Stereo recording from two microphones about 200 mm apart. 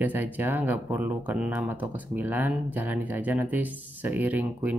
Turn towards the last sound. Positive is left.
turn(degrees=-10)  # may be behind; listen again after turning